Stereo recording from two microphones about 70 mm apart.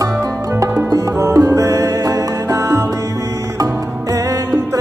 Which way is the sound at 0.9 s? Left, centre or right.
Right.